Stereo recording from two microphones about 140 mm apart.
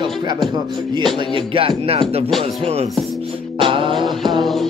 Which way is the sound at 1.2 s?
40° right (ahead or behind).